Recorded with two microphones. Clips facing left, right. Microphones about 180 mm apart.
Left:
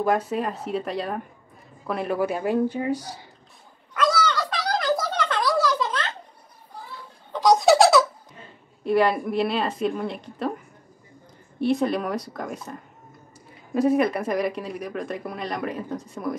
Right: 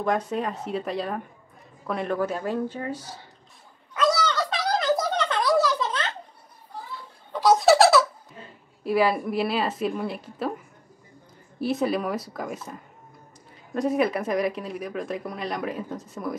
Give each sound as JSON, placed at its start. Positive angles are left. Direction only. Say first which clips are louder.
{"t": 0.0, "sound": "speech", "louder": "left 2 dB", "side_deg": 5}
{"t": 3.9, "sound": "a sound", "louder": "even", "side_deg": -20}
{"t": 7.3, "sound": "baby laughter", "louder": "left 1 dB", "side_deg": 0}
{"t": 8.8, "sound": "speech", "louder": "left 2 dB", "side_deg": -5}
{"t": 11.6, "sound": "speech", "louder": "left 2 dB", "side_deg": -5}